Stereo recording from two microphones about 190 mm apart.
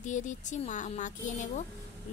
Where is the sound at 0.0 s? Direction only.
40° left (ahead or behind).